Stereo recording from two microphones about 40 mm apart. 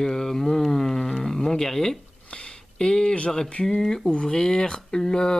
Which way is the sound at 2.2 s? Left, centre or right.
Left.